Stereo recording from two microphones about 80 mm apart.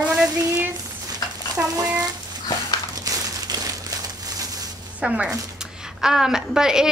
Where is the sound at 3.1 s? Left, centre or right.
Right.